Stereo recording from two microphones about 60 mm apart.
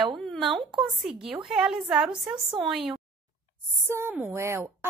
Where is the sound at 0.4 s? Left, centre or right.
Centre.